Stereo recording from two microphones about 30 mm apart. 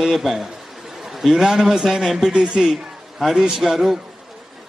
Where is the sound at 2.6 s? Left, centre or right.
Centre.